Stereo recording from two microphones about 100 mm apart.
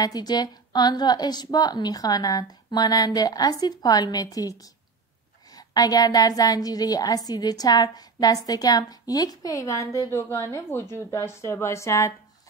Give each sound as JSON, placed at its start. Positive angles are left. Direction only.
{"t": 0.0, "sound": "a woman's voice", "side_deg": 40}